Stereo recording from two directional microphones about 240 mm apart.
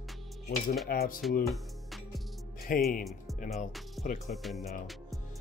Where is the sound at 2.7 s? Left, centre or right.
Left.